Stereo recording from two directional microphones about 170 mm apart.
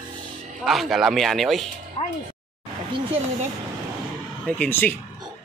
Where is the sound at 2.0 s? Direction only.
35° left (ahead or behind).